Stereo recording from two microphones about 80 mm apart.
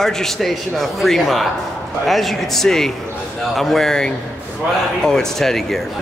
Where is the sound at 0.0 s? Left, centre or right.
Centre.